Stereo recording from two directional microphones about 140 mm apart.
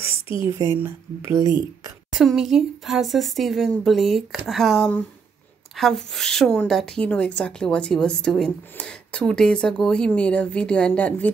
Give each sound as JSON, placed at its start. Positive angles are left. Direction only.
{"t": 0.1, "sound": "a sound", "side_deg": 40}
{"t": 0.5, "sound": "speech", "side_deg": -20}
{"t": 2.1, "sound": "a woman's voice", "side_deg": -5}